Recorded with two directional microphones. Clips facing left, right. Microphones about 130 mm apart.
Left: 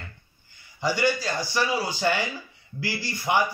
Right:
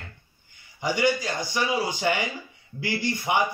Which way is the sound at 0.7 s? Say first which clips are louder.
Even; 15° right (ahead or behind).